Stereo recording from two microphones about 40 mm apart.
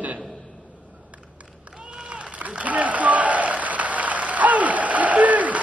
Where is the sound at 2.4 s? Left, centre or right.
Right.